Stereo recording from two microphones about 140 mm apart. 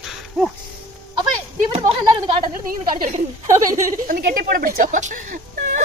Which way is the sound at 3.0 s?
65° right (ahead or behind).